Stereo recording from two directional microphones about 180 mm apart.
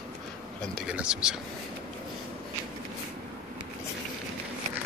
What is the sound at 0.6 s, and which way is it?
Speech, centre (ahead or behind).